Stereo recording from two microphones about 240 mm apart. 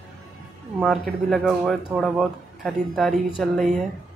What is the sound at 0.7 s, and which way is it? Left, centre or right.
Speech, centre.